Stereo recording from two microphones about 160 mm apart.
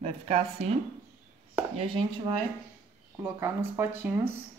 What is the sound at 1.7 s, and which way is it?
Speech, 35° right (ahead or behind).